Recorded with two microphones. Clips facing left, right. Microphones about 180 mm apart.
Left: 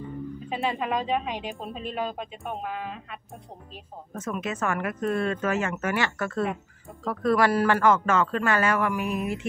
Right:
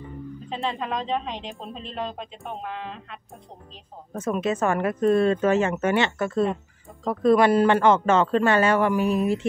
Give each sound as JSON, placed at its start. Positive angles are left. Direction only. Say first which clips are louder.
{"t": 0.5, "sound": "a woman's voice", "louder": "left 1 dB", "side_deg": 10}
{"t": 4.2, "sound": "speech", "louder": "right 6 dB", "side_deg": -30}